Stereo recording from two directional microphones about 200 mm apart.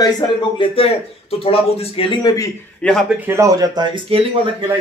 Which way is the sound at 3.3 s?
15° right (ahead or behind).